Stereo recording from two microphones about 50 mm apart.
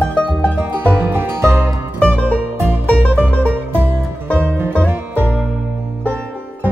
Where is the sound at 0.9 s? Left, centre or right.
Right.